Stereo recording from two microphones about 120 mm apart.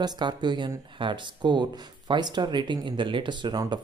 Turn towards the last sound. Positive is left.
turn(degrees=-40)  # may be behind; listen again after turning